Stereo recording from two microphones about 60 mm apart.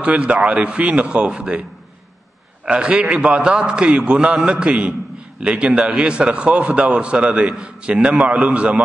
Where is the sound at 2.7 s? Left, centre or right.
Centre.